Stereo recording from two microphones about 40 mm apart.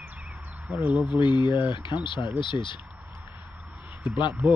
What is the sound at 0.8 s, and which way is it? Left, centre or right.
Speech, right.